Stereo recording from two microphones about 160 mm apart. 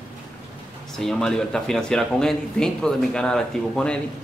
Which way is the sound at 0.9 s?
5° left (ahead or behind).